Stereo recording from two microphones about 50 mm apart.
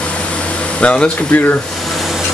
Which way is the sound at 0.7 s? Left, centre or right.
Left.